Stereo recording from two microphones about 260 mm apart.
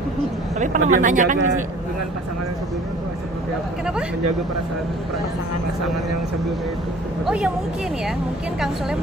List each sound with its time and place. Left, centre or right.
0.6 s speech: right
7.2 s speech: centre